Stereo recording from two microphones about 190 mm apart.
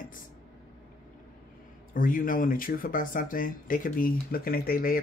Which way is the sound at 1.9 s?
45° left (ahead or behind).